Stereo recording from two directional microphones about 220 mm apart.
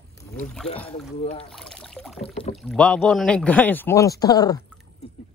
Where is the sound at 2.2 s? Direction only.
25° left (ahead or behind).